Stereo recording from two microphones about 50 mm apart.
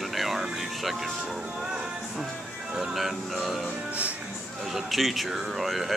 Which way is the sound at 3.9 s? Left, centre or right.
Right.